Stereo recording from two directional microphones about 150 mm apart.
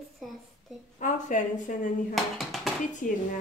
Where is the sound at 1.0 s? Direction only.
55° left (ahead or behind).